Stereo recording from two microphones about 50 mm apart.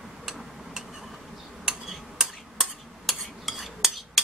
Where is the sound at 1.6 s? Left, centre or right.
Centre.